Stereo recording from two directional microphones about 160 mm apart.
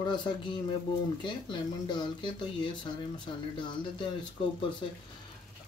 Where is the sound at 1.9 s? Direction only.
30° left (ahead or behind).